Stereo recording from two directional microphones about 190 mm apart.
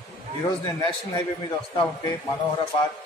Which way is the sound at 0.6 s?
20° left (ahead or behind).